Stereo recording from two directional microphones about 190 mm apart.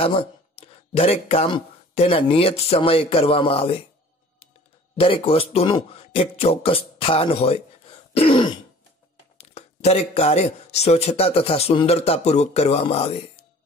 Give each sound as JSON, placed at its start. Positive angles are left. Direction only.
{"t": 0.0, "sound": "speech", "side_deg": 30}
{"t": 4.9, "sound": "speech", "side_deg": 30}